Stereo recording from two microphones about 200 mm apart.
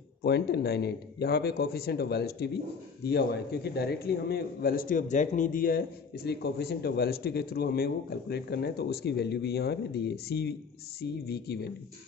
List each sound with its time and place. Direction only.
0.2 s a man's voice: 55° left (ahead or behind)